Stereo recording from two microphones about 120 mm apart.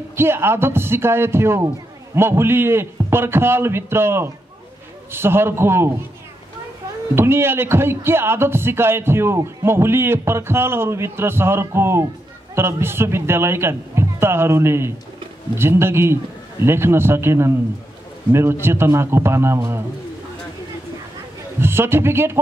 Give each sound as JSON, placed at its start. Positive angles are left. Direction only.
{"t": 0.1, "sound": "speech", "side_deg": -20}
{"t": 7.2, "sound": "speech", "side_deg": -20}
{"t": 21.5, "sound": "speech", "side_deg": -20}